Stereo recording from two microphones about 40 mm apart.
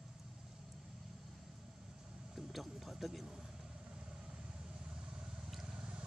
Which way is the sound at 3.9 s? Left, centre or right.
Right.